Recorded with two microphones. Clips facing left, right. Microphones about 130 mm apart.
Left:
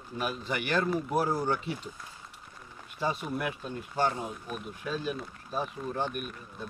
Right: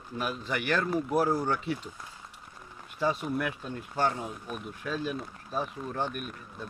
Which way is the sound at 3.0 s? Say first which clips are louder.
Right 3 dB; 15° left (ahead or behind).